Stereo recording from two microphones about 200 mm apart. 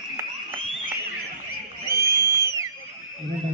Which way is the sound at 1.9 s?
15° right (ahead or behind).